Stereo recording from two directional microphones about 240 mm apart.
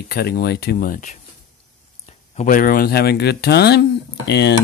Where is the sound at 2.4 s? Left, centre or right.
Left.